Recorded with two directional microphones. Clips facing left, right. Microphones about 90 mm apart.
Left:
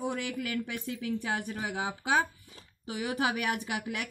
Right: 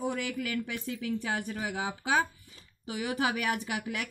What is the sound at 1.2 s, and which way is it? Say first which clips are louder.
A woman's voice: even; 20° left (ahead or behind).